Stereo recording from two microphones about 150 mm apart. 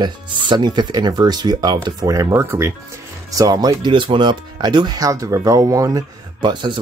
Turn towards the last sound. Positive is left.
turn(degrees=-30)  # may be behind; listen again after turning